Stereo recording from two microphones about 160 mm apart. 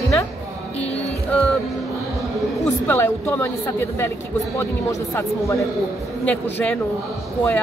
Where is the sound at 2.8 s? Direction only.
10° left (ahead or behind).